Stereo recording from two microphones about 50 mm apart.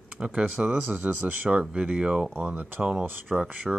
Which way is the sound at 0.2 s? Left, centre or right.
Right.